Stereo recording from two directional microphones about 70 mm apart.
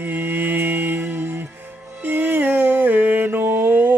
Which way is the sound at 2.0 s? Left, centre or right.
Right.